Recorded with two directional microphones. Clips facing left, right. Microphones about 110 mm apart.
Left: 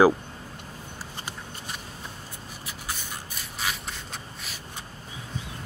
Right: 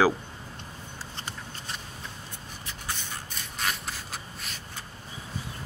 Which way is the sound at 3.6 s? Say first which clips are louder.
Even; centre (ahead or behind).